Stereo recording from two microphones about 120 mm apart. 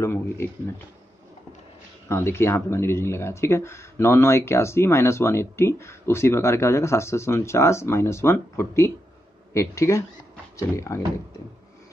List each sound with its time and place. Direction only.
0.0 s speech: 20° left (ahead or behind)
2.0 s speech: 20° left (ahead or behind)